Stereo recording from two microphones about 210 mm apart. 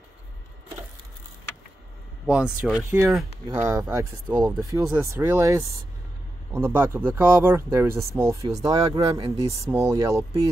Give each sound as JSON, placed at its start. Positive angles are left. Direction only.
{"t": 2.2, "sound": "speech", "side_deg": -5}